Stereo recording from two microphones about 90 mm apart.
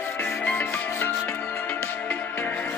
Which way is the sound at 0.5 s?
20° left (ahead or behind).